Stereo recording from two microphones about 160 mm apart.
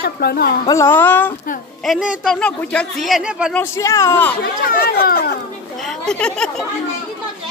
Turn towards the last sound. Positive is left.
turn(degrees=5)  # may be behind; listen again after turning